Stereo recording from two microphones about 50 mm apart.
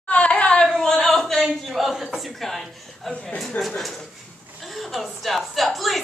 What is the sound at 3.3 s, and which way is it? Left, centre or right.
Speech, centre.